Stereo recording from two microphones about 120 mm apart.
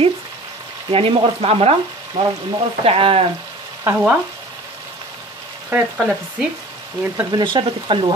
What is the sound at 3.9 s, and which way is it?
Frying, 20° right (ahead or behind).